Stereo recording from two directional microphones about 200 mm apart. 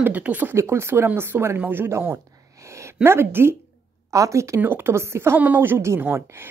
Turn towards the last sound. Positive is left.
turn(degrees=-10)  # may be behind; listen again after turning